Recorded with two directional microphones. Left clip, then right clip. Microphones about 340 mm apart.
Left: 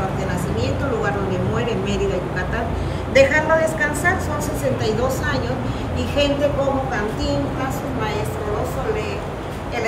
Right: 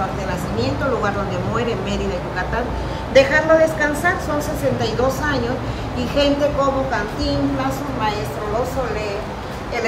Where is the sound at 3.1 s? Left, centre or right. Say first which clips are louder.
Right 2 dB; right.